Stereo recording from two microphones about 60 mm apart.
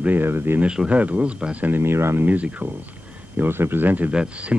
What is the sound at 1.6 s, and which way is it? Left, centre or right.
Speech, right.